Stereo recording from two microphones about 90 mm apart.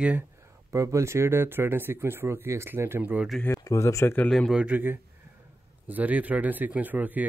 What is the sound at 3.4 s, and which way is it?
Speech, 35° left (ahead or behind).